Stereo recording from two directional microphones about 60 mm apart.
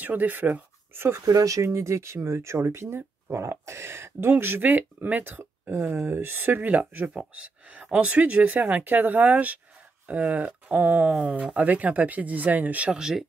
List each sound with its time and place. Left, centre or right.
0.0 s speech: right
1.2 s speech: right
5.4 s speech: right